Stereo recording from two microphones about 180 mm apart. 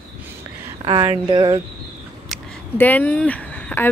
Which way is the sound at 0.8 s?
30° right (ahead or behind).